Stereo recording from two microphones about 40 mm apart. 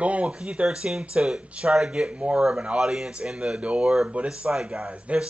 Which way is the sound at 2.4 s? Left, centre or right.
Centre.